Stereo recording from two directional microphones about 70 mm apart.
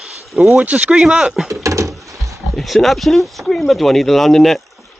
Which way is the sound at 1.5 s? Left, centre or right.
Right.